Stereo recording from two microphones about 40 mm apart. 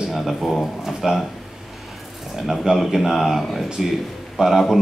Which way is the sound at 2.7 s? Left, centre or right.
Centre.